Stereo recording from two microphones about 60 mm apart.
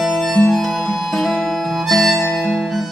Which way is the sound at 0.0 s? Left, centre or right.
Centre.